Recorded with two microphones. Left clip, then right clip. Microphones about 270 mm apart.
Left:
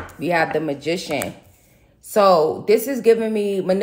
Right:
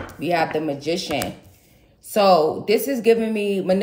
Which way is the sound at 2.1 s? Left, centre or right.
Centre.